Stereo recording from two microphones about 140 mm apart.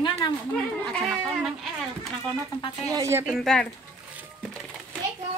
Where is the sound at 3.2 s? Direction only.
Centre (ahead or behind).